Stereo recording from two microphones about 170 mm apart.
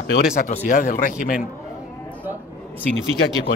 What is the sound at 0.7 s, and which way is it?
Speech, 55° left (ahead or behind).